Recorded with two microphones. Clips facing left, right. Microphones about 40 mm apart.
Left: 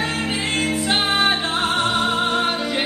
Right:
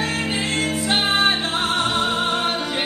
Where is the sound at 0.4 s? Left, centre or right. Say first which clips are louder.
Left 1 dB; centre.